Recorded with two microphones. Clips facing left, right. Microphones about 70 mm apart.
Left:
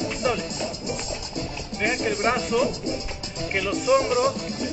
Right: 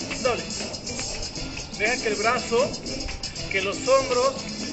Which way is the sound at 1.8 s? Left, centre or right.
Centre.